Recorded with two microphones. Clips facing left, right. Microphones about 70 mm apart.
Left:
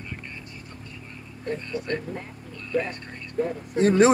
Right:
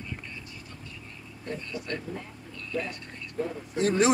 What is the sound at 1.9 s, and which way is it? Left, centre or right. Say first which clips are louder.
Speech: left 4 dB; left.